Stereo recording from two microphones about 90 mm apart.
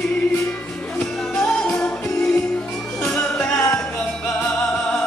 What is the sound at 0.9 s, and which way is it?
Music, 10° left (ahead or behind).